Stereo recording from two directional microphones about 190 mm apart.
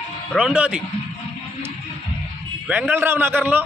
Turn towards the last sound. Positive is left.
turn(degrees=-10)  # may be behind; listen again after turning